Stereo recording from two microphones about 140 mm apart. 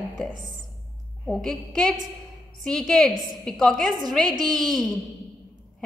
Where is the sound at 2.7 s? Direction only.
5° left (ahead or behind).